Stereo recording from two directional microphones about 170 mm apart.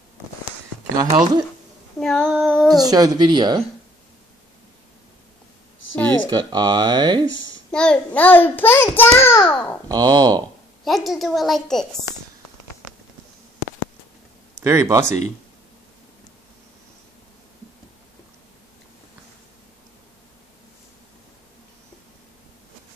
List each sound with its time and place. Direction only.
2.0 s a woman's voice: 5° left (ahead or behind)
2.8 s speech: 20° right (ahead or behind)
5.9 s a child's voice: 10° left (ahead or behind)
6.3 s speech: 25° right (ahead or behind)
7.7 s a child's voice: 5° left (ahead or behind)
9.8 s speech: 20° right (ahead or behind)
10.8 s a woman's voice: centre (ahead or behind)
14.6 s speech: 15° right (ahead or behind)